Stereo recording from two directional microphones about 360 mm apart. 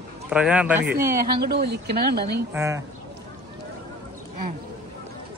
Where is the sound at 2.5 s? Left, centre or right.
Centre.